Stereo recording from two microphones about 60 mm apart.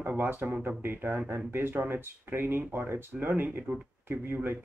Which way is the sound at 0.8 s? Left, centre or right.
Right.